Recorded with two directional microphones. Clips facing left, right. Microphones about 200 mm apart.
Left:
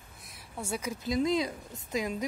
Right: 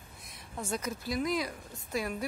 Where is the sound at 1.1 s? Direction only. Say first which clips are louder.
Left 5 dB; 25° left (ahead or behind).